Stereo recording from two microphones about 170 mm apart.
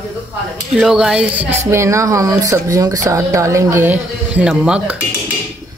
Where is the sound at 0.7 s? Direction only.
5° right (ahead or behind).